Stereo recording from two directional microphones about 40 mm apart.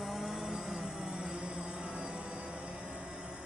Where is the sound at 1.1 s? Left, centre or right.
Right.